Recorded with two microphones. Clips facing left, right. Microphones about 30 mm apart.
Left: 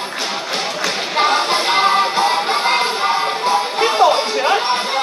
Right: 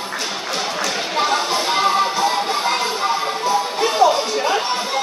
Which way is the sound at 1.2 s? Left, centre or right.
Left.